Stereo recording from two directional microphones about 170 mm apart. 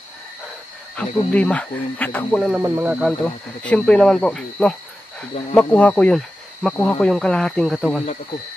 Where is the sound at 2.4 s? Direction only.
5° right (ahead or behind).